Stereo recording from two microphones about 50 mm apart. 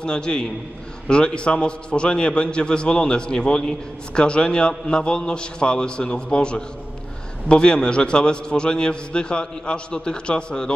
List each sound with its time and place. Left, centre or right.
0.0 s a man's voice: centre